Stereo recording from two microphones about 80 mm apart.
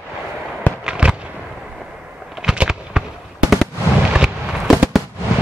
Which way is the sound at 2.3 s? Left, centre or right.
Centre.